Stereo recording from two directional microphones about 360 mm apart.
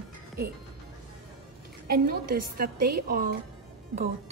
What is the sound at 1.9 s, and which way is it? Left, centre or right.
A woman's voice, right.